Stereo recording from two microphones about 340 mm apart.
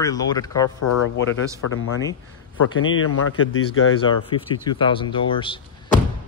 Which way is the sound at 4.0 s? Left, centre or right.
Centre.